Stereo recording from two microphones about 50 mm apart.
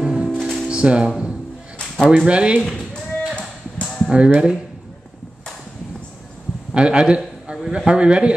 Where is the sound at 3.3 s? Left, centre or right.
Left.